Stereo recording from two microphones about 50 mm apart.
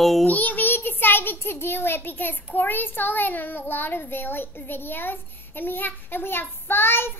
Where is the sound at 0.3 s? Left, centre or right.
Left.